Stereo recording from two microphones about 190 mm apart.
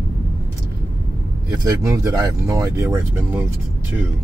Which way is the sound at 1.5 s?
20° right (ahead or behind).